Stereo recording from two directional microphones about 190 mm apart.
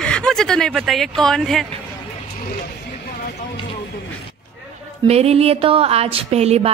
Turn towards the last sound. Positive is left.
turn(degrees=-35)  # may be behind; listen again after turning